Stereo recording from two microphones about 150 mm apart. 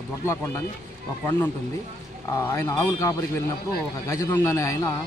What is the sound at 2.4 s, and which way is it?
A man's voice, 15° left (ahead or behind).